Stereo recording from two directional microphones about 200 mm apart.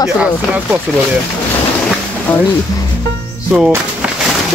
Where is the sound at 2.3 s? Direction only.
5° left (ahead or behind).